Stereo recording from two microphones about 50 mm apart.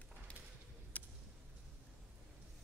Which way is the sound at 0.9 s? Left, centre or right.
Left.